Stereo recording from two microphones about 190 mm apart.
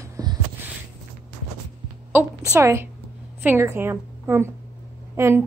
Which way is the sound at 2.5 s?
15° right (ahead or behind).